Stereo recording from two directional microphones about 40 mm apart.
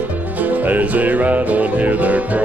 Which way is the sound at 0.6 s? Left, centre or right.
Right.